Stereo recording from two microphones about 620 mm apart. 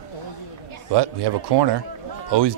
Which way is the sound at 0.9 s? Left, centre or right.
Right.